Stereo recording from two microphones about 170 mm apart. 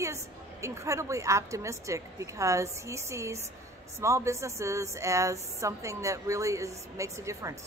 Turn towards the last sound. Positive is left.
turn(degrees=-20)  # may be behind; listen again after turning